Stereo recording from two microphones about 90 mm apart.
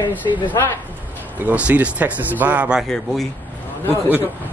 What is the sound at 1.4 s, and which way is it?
Speech, 15° right (ahead or behind).